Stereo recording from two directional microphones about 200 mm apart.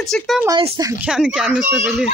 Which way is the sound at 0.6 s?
20° right (ahead or behind).